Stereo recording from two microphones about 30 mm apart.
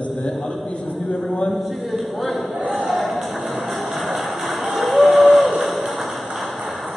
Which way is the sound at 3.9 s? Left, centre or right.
Centre.